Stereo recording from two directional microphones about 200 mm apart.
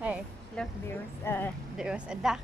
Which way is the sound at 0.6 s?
5° left (ahead or behind).